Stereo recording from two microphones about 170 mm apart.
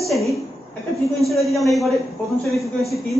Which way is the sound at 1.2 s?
Centre (ahead or behind).